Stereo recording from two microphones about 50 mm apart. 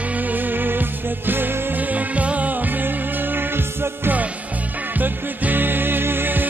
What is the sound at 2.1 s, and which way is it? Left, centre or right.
Music, right.